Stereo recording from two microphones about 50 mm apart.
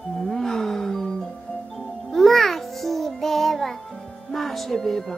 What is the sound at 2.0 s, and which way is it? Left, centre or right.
Music, centre.